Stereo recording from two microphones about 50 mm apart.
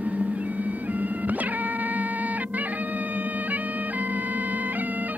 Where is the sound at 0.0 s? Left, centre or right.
Right.